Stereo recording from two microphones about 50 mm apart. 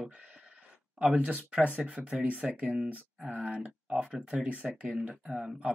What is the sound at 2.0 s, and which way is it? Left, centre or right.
Speech, right.